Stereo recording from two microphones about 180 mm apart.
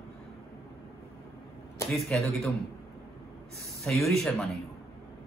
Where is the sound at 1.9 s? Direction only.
Centre (ahead or behind).